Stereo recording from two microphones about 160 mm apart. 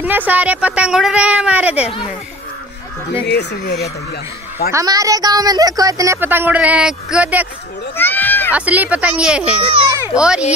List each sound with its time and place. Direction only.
0.0 s a woman's voice: 10° right (ahead or behind)
3.3 s speech: 90° left
4.6 s a woman's voice: 20° right (ahead or behind)
8.0 s a sound: 10° left (ahead or behind)
8.5 s a woman's voice: 10° right (ahead or behind)
9.7 s a sound: 35° right (ahead or behind)
10.1 s a child's voice: 5° right (ahead or behind)